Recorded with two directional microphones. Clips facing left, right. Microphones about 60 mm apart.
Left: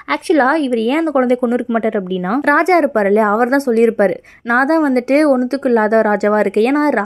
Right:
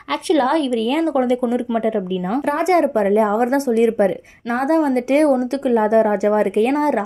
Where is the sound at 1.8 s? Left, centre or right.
Left.